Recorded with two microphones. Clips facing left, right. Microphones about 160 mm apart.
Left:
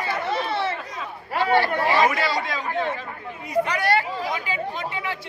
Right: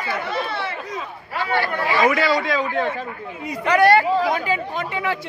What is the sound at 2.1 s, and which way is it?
Speech, 90° right.